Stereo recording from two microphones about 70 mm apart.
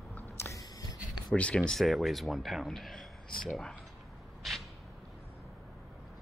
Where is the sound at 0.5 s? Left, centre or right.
Left.